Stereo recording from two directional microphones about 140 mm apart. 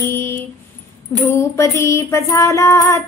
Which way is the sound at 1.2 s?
20° left (ahead or behind).